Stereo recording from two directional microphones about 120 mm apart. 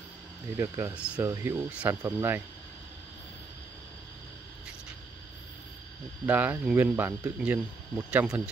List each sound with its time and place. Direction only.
0.6 s speech: 20° right (ahead or behind)
0.9 s speech: 10° right (ahead or behind)
1.2 s speech: 20° right (ahead or behind)
1.7 s speech: 10° right (ahead or behind)
6.2 s speech: 15° right (ahead or behind)